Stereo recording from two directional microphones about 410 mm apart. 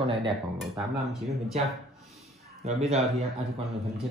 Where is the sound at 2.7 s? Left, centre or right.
Centre.